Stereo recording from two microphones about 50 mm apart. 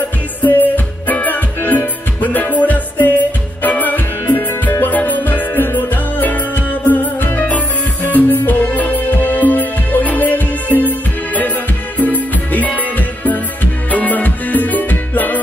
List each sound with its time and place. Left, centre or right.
0.4 s music: left